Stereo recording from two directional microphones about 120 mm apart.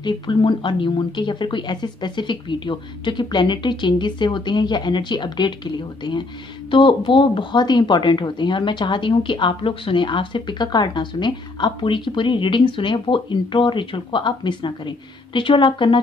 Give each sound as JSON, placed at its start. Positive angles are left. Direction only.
{"t": 0.0, "sound": "speech", "side_deg": 40}
{"t": 6.7, "sound": "speech", "side_deg": 45}